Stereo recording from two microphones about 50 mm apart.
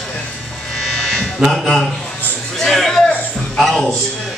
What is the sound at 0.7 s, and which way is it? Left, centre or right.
Electric shaver, centre.